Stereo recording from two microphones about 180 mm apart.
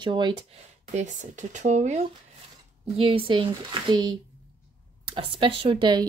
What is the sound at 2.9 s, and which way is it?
Speech, 30° right (ahead or behind).